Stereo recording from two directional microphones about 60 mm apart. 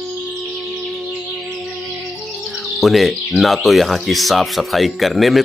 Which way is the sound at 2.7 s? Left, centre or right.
Centre.